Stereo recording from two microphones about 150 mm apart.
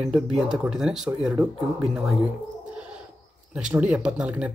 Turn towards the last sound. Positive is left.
turn(degrees=-10)  # may be behind; listen again after turning